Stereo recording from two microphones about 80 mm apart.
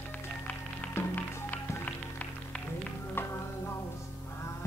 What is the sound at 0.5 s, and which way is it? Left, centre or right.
Music, left.